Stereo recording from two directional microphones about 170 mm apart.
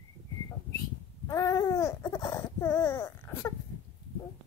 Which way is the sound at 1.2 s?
20° left (ahead or behind).